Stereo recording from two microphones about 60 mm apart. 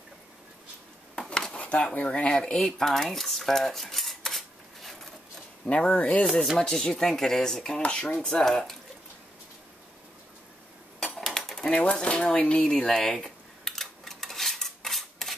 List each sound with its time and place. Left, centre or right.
1.1 s a sound: centre
1.5 s a sound: left
2.0 s speech: left
2.3 s cutlery: centre
5.7 s speech: centre
8.4 s speech: centre
11.1 s dishes: centre
11.7 s drawer open or close: centre